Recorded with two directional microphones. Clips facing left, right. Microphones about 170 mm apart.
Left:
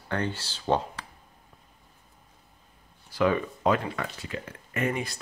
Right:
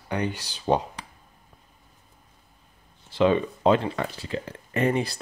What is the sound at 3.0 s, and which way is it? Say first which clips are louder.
Speech: right 4 dB; 25° right (ahead or behind).